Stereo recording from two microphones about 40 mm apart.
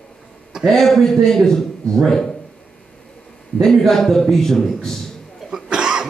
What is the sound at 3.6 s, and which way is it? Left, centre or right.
A man's voice, centre.